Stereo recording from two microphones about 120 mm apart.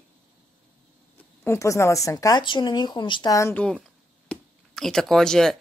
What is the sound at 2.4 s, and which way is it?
Speech, 40° left (ahead or behind).